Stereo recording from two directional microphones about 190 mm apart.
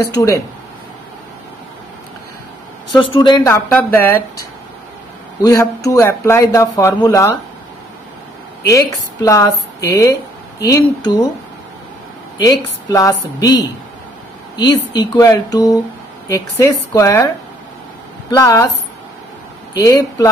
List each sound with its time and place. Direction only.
3.0 s a woman's voice: 25° left (ahead or behind)
3.4 s speech: 10° left (ahead or behind)
5.4 s speech: 20° left (ahead or behind)
8.6 s a woman's voice: 20° left (ahead or behind)
12.4 s a woman's voice: 20° left (ahead or behind)
18.3 s speech: 20° left (ahead or behind)
19.7 s a woman's voice: 20° left (ahead or behind)